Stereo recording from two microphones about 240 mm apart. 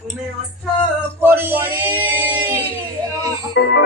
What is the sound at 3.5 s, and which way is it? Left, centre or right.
Music, left.